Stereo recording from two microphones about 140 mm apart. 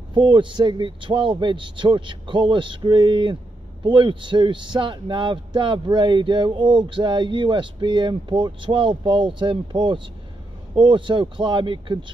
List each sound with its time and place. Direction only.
0.1 s speech: 35° right (ahead or behind)